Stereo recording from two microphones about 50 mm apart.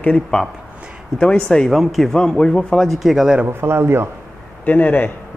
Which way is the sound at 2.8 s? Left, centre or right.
Centre.